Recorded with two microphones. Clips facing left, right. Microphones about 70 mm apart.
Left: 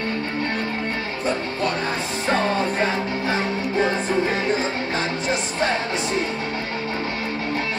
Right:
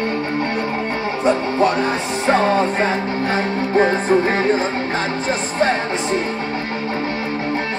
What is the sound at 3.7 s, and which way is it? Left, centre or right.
Music, right.